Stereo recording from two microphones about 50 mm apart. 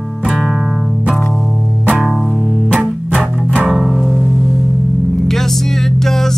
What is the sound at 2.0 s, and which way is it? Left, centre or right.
Music, centre.